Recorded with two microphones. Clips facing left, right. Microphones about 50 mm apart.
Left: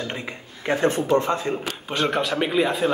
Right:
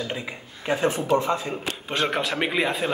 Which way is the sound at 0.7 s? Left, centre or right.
Left.